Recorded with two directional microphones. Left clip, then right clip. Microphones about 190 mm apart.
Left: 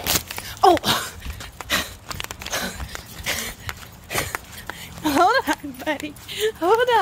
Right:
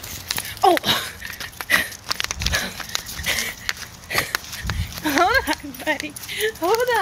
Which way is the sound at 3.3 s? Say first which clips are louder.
Right 5 dB; 10° left (ahead or behind).